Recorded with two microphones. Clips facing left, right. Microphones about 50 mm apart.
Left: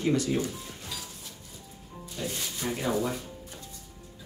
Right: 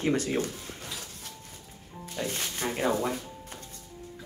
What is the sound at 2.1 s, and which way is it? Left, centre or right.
Speech, right.